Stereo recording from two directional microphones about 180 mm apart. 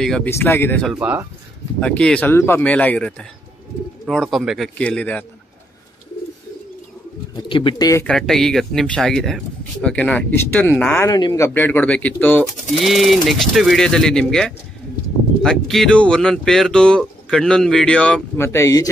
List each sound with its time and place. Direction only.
0.0 s speech: 5° left (ahead or behind)
0.3 s speech: 15° left (ahead or behind)
0.9 s speech: 10° right (ahead or behind)
1.8 s speech: 5° left (ahead or behind)
7.3 s speech: 25° left (ahead or behind)
8.0 s speech: 5° left (ahead or behind)
18.5 s speech: 15° left (ahead or behind)